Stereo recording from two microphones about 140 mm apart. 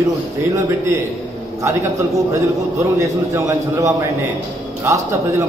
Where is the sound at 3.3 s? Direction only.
20° right (ahead or behind).